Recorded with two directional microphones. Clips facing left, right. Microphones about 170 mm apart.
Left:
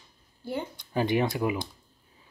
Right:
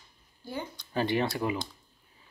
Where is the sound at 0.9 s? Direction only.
15° left (ahead or behind).